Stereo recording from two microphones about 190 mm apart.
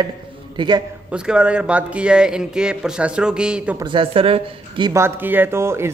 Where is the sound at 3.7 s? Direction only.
25° right (ahead or behind).